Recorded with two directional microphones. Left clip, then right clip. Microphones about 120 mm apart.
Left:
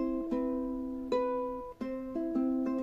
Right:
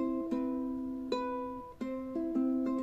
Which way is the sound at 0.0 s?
20° left (ahead or behind).